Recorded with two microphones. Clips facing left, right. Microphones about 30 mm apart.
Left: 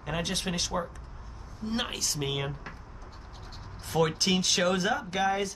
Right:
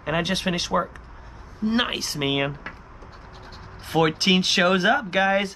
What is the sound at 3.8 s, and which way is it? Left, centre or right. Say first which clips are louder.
Speech: right 6 dB; right.